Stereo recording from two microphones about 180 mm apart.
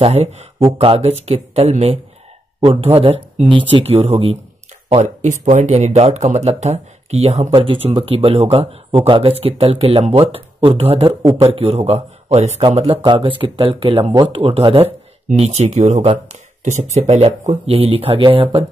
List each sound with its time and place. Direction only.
0.0 s speech: 35° right (ahead or behind)